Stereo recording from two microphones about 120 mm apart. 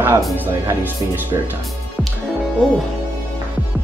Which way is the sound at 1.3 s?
45° right (ahead or behind).